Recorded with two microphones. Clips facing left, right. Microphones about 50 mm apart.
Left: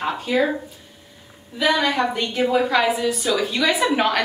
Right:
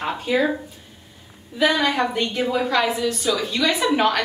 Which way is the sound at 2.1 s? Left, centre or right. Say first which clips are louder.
Left 2 dB; centre.